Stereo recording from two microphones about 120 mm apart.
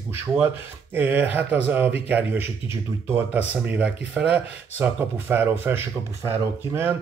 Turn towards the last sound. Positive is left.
turn(degrees=-20)  # may be behind; listen again after turning